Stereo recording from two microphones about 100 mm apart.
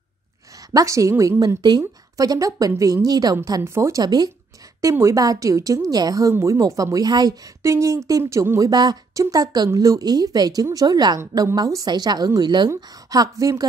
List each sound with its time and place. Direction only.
0.7 s a woman's voice: 35° right (ahead or behind)
3.6 s speech: 30° right (ahead or behind)
4.0 s a woman's voice: 45° right (ahead or behind)
4.8 s a woman's voice: 30° right (ahead or behind)
7.6 s a woman's voice: 30° right (ahead or behind)